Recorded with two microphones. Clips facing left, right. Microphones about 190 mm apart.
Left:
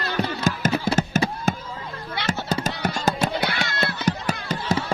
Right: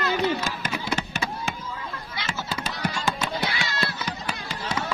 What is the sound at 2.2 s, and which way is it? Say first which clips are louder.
Fireworks: left 7 dB; 65° left (ahead or behind).